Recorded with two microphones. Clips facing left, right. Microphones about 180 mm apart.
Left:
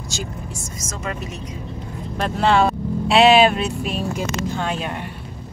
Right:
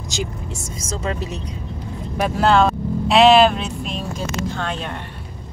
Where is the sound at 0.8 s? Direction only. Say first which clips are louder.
Right 4 dB; 30° right (ahead or behind).